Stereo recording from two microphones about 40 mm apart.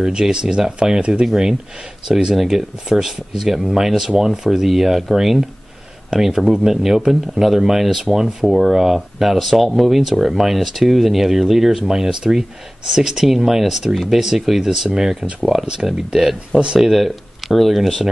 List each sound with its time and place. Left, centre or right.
0.0 s speech: centre
16.5 s speech: right
16.8 s speech: centre